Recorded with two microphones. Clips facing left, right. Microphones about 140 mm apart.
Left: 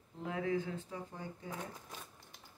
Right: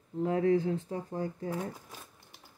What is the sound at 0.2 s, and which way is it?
Speech, 40° right (ahead or behind).